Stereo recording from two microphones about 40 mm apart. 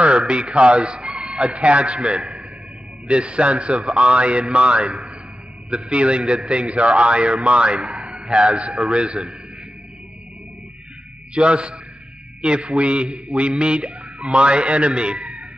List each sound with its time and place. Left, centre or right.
0.3 s a man's voice: right
11.3 s a man's voice: right